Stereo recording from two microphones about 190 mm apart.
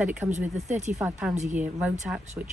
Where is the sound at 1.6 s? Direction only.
5° right (ahead or behind).